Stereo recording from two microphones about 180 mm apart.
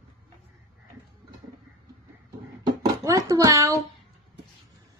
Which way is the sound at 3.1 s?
20° right (ahead or behind).